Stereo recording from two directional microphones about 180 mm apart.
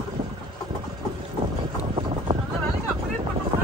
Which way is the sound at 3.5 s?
30° right (ahead or behind).